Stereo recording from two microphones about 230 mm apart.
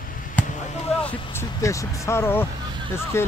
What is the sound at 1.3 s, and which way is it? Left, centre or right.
Speech, centre.